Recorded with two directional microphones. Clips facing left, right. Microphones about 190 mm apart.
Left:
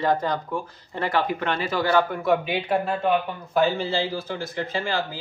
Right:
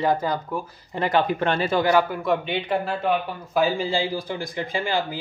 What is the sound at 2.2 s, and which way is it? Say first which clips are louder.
Speech: left 1 dB; 5° left (ahead or behind).